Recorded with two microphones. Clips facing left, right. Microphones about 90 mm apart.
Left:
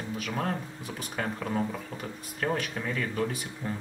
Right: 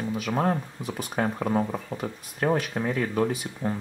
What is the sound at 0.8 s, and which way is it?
Speech, centre (ahead or behind).